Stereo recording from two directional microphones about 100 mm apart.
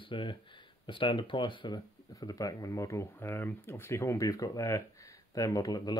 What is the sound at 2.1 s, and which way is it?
Speech, 35° left (ahead or behind).